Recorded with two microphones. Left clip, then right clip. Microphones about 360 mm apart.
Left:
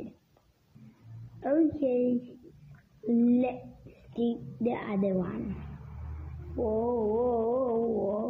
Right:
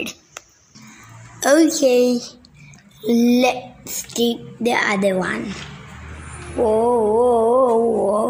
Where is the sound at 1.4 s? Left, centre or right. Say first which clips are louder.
Right 13 dB; left.